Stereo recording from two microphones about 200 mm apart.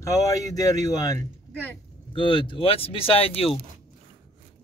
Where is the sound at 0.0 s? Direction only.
15° left (ahead or behind).